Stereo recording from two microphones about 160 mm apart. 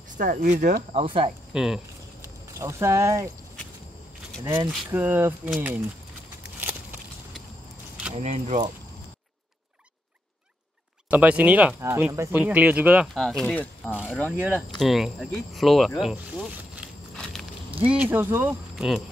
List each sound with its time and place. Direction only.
0.2 s speech: 55° right (ahead or behind)
0.9 s speech: 40° right (ahead or behind)
1.5 s speech: 5° right (ahead or behind)
2.6 s speech: 20° right (ahead or behind)
4.5 s speech: 10° right (ahead or behind)
6.4 s a sound: 10° right (ahead or behind)
8.1 s speech: 45° right (ahead or behind)
11.1 s speech: 10° right (ahead or behind)
17.8 s speech: 10° right (ahead or behind)